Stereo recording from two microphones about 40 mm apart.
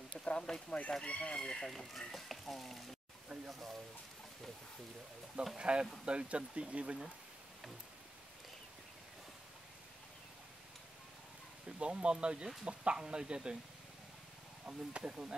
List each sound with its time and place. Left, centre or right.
0.2 s a sound: left
0.7 s speech: left
1.7 s speech: centre
5.6 s speech: right
11.8 s speech: right
14.7 s speech: right